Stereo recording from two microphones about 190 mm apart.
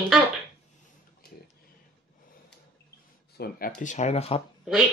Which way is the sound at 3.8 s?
40° left (ahead or behind).